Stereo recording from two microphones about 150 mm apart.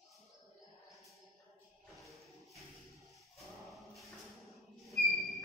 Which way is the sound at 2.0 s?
Centre (ahead or behind).